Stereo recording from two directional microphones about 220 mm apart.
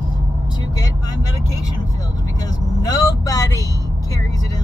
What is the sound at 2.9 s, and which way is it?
Speech, 15° left (ahead or behind).